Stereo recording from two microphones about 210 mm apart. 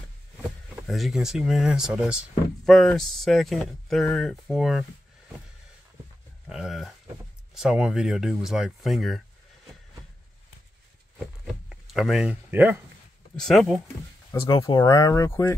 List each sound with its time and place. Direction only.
0.8 s speech: centre (ahead or behind)
6.5 s a sound: centre (ahead or behind)
7.5 s speech: 5° right (ahead or behind)
11.9 s speech: centre (ahead or behind)
13.4 s speech: centre (ahead or behind)
14.3 s speech: 15° left (ahead or behind)